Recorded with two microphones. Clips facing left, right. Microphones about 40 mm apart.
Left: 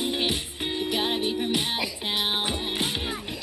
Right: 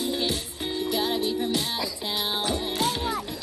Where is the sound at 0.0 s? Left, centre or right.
Left.